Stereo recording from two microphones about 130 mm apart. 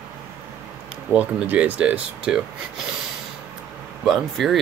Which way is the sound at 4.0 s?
Centre (ahead or behind).